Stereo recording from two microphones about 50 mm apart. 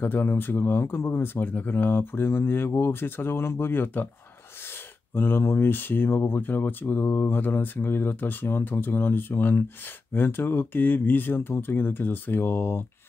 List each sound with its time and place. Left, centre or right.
0.0 s speech: left
5.1 s speech: left